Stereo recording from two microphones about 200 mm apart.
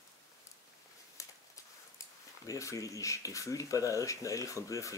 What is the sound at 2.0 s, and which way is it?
Speech, 15° left (ahead or behind).